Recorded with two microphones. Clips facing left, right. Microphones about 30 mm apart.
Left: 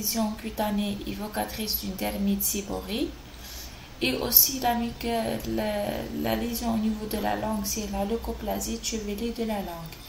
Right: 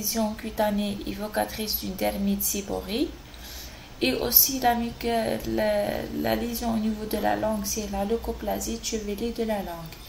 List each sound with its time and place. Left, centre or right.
0.1 s a woman's voice: centre